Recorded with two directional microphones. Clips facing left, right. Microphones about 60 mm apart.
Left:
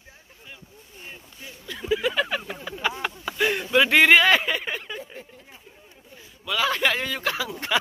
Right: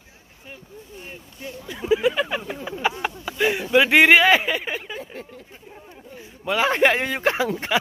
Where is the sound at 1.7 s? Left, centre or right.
Centre.